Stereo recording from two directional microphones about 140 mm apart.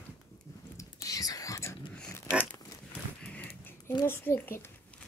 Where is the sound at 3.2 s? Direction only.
10° left (ahead or behind).